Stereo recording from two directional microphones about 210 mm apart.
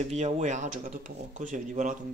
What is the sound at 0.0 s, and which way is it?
Speech, 35° right (ahead or behind).